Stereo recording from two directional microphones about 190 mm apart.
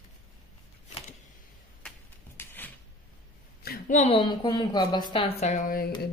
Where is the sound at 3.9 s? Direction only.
35° left (ahead or behind).